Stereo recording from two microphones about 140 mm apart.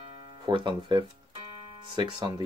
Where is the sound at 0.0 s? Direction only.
40° right (ahead or behind).